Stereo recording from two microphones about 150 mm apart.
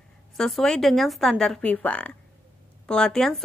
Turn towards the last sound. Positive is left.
turn(degrees=5)  # may be behind; listen again after turning